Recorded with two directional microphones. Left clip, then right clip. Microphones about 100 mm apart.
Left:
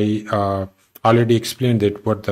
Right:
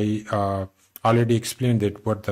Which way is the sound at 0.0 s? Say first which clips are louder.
Left 5 dB; 40° right (ahead or behind).